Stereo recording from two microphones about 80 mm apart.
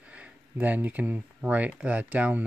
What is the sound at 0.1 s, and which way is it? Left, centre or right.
Speech, centre.